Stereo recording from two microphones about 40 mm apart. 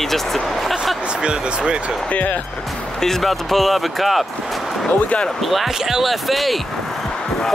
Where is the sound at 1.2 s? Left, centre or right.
Right.